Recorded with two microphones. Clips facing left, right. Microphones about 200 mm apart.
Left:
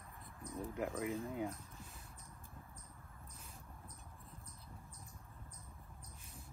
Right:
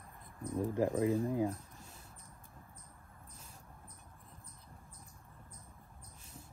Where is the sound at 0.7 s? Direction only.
30° right (ahead or behind).